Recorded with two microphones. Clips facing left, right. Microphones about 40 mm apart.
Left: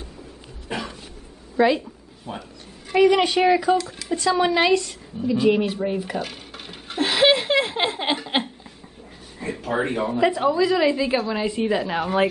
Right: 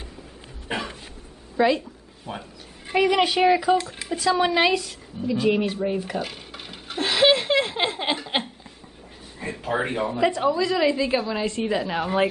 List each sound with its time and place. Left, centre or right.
0.7 s a sound: right
1.6 s a woman's voice: centre
2.3 s speech: centre
2.9 s a woman's voice: centre
5.9 s a sound: centre
9.7 s speech: centre
10.0 s a woman's voice: centre